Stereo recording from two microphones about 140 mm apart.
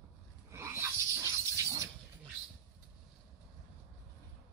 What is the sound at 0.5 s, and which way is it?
Dog, 20° right (ahead or behind).